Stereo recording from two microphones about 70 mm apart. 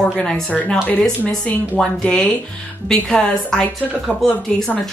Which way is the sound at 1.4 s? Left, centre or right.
Left.